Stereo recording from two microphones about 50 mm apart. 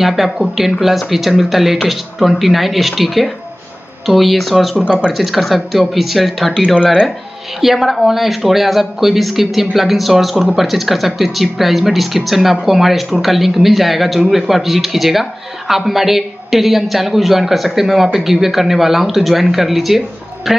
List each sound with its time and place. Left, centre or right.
0.0 s speech: centre
4.8 s speech: right
5.1 s speech: centre
6.8 s speech: centre
7.6 s speech: centre